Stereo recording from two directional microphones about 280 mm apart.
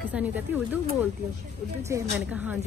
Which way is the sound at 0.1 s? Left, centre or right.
Centre.